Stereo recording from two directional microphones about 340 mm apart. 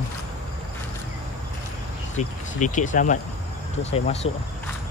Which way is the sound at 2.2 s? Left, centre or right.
Left.